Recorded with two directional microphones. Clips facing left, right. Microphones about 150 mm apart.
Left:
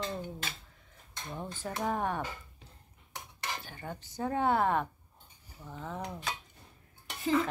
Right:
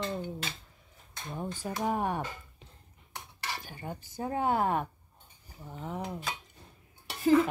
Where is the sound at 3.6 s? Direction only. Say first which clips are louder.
Right 1 dB; 15° right (ahead or behind).